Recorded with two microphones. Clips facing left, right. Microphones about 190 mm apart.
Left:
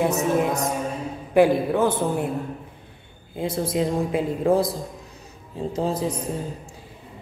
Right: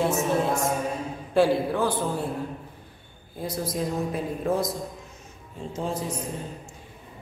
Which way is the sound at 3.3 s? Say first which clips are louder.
Left 5 dB; 25° left (ahead or behind).